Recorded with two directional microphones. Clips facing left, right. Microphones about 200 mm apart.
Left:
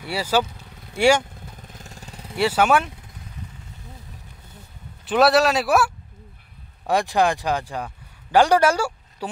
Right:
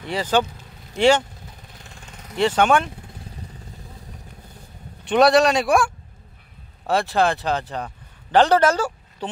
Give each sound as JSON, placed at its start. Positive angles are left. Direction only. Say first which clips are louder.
{"t": 0.0, "sound": "speech", "louder": "right 1 dB", "side_deg": 10}
{"t": 1.8, "sound": "vehicle", "louder": "left 3 dB", "side_deg": 40}
{"t": 2.3, "sound": "speech", "louder": "right 1 dB", "side_deg": 10}
{"t": 5.0, "sound": "speech", "louder": "right 2 dB", "side_deg": 5}
{"t": 6.9, "sound": "a man's voice", "louder": "even", "side_deg": 15}